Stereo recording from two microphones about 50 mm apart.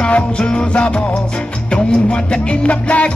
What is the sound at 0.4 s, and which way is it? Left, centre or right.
Music, left.